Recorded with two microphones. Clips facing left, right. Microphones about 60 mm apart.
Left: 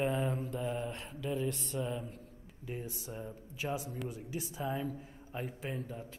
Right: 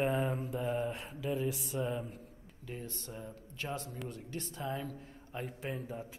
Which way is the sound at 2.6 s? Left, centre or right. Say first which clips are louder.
Left 2 dB; centre.